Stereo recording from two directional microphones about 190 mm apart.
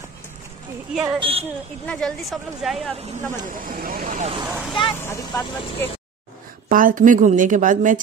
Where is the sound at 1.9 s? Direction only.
5° left (ahead or behind).